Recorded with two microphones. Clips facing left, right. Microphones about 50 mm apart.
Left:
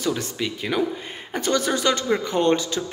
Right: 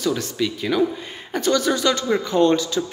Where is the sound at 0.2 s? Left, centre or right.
Left.